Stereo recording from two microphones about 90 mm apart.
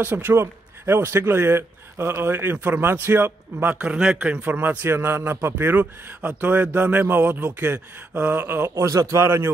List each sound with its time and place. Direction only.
0.0 s a man's voice: 25° right (ahead or behind)
3.7 s a man's voice: 10° right (ahead or behind); by 9.5 s 30° right (ahead or behind)